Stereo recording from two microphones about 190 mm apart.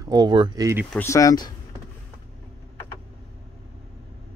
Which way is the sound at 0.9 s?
15° left (ahead or behind).